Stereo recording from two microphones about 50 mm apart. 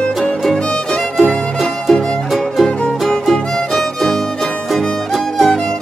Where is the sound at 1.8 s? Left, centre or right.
Centre.